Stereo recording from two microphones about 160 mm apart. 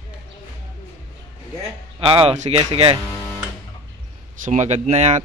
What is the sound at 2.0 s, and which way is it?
Speech, 35° right (ahead or behind).